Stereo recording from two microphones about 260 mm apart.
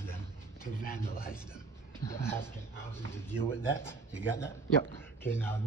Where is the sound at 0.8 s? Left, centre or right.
Left.